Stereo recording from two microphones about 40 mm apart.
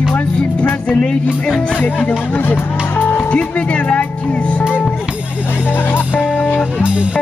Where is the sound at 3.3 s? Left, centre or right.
Left.